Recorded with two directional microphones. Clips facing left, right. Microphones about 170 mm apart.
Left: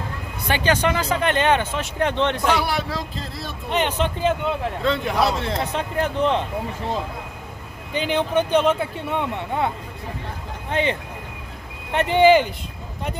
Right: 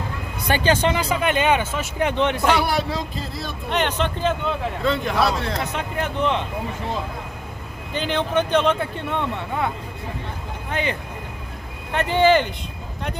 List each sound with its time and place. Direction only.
0.7 s speech: 25° right (ahead or behind)
0.9 s speech: 10° right (ahead or behind)
2.6 s a man's voice: 40° right (ahead or behind)
3.2 s speech: centre (ahead or behind)
5.1 s a man's voice: 20° left (ahead or behind)
7.9 s speech: 10° left (ahead or behind)
10.7 s speech: 30° left (ahead or behind)